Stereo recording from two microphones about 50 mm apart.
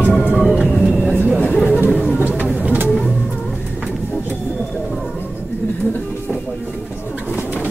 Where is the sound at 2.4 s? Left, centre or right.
Right.